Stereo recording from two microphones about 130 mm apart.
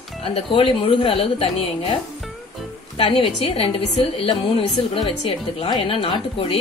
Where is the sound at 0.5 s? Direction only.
40° left (ahead or behind).